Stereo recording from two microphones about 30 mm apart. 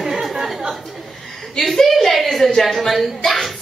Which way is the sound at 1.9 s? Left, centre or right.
Centre.